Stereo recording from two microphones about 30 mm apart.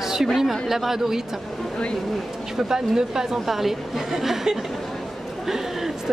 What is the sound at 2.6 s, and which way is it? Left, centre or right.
A woman's voice, centre.